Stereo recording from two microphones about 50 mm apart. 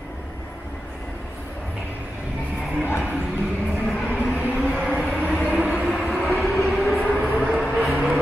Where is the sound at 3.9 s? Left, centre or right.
Left.